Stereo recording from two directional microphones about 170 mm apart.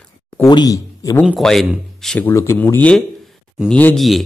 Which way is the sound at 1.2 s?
Centre (ahead or behind).